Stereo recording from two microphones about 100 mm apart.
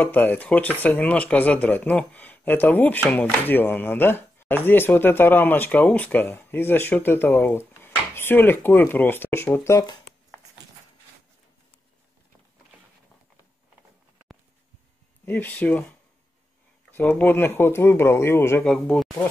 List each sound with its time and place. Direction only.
0.0 s speech: 20° left (ahead or behind)
15.2 s speech: 15° left (ahead or behind)
17.1 s speech: 20° left (ahead or behind)
18.6 s speech: 10° left (ahead or behind)